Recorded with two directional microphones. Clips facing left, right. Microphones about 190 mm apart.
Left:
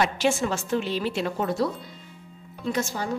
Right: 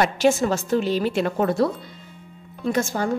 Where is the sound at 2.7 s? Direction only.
50° right (ahead or behind).